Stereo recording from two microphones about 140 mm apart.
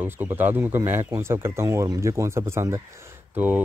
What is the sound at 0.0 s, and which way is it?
Speech, 15° right (ahead or behind).